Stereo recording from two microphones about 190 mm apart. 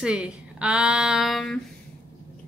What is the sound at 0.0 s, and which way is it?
A woman's voice, 5° right (ahead or behind).